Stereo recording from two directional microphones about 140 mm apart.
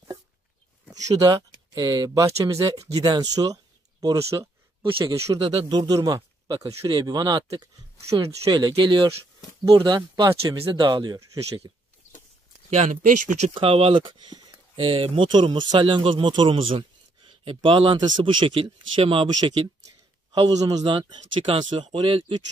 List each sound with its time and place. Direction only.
0.9 s speech: 25° right (ahead or behind)
5.4 s speech: 35° right (ahead or behind)
8.7 s speech: 35° right (ahead or behind)
12.6 s speech: 55° right (ahead or behind)
13.6 s speech: 40° right (ahead or behind)